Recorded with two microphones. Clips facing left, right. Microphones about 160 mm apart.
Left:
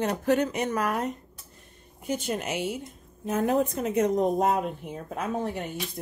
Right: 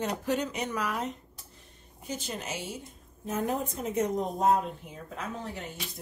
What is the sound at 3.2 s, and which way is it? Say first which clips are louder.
Speech: left 6 dB; 75° left (ahead or behind).